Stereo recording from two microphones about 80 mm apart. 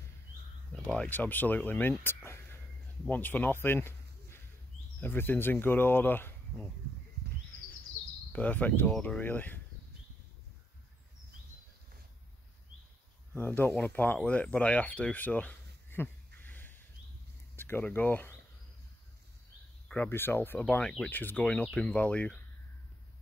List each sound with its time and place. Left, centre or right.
0.9 s speech: left
2.2 s a sound: left
3.1 s speech: left
8.3 s speech: centre
13.3 s speech: left
20.1 s speech: left
20.6 s speech: centre
21.5 s speech: centre